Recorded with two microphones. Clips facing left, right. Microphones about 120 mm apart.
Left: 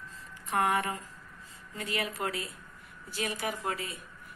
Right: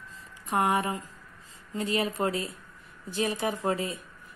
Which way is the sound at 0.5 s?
20° right (ahead or behind).